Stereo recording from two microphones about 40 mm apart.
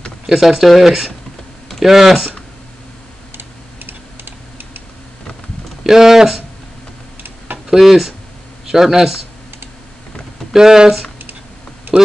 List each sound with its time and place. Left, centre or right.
0.3 s speech: centre
3.3 s typing: right
5.9 s speech: centre
7.7 s speech: centre
10.5 s speech: centre
11.9 s a sound: right